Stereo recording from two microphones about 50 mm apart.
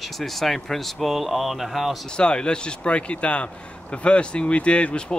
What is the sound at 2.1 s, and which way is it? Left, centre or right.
Speech, centre.